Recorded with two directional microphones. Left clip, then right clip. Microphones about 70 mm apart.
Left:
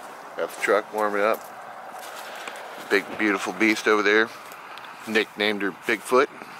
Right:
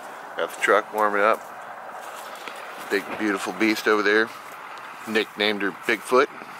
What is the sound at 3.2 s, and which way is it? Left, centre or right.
Speech, centre.